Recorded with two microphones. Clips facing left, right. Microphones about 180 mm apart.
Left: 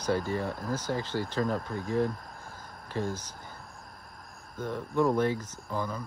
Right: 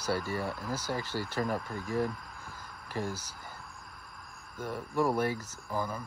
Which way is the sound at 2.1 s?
40° left (ahead or behind).